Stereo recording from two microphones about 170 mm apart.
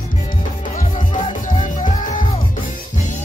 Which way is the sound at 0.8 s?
45° left (ahead or behind).